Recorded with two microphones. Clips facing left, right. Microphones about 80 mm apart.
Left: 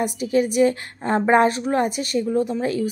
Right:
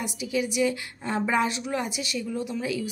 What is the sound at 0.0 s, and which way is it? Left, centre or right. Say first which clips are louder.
A woman's voice: left 8 dB; left.